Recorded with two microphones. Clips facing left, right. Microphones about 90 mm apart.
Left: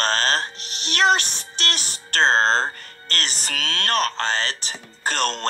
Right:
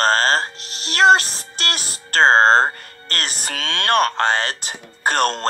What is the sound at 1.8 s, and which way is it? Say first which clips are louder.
Speech: right 5 dB; 45° right (ahead or behind).